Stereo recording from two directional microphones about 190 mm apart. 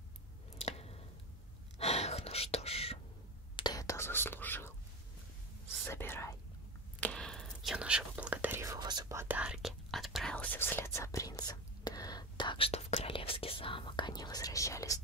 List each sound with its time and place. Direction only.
0.6 s squish: 35° left (ahead or behind)
1.8 s whispering: 35° left (ahead or behind)
3.5 s whispering: 20° left (ahead or behind)
5.9 s whispering: 10° left (ahead or behind)